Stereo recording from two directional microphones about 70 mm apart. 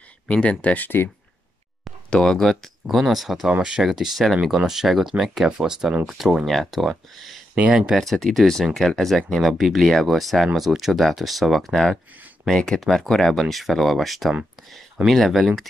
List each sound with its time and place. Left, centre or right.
0.3 s speech: centre
2.0 s speech: centre
7.5 s speech: centre
7.9 s speech: centre